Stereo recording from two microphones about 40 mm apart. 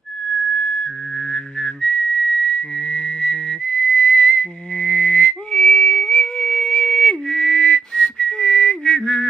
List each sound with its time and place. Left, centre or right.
1.3 s whistling: centre